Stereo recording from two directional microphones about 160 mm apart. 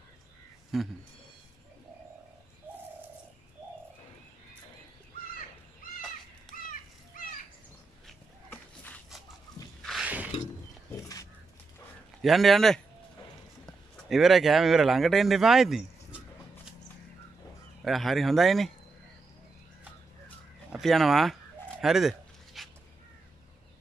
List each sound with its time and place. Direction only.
0.7 s speech: centre (ahead or behind)
6.5 s a sound: centre (ahead or behind)
8.5 s a sound: 10° left (ahead or behind)
9.8 s a sound: 5° right (ahead or behind)
11.0 s dog: 20° left (ahead or behind)
12.2 s speech: centre (ahead or behind)
17.8 s speech: centre (ahead or behind)
20.7 s speech: centre (ahead or behind)
21.8 s dog: centre (ahead or behind)